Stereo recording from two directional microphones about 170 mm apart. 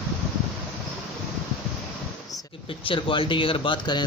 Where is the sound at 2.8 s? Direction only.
30° left (ahead or behind).